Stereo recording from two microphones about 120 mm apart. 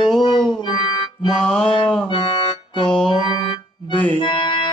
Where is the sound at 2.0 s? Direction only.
45° left (ahead or behind).